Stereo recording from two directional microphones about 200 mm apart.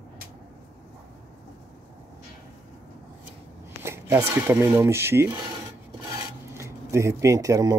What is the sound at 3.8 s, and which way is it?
Speech, 10° right (ahead or behind).